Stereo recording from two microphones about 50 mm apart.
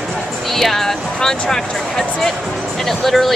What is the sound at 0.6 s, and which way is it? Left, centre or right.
Music, centre.